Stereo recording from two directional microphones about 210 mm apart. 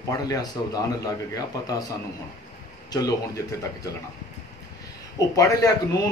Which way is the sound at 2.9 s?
20° left (ahead or behind).